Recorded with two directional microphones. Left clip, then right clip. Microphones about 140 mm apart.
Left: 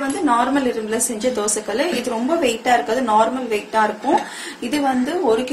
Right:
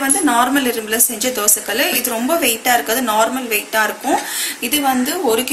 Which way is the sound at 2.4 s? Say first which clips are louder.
Left 1 dB; 25° left (ahead or behind).